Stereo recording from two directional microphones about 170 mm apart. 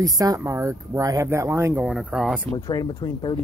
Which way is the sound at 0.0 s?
20° right (ahead or behind).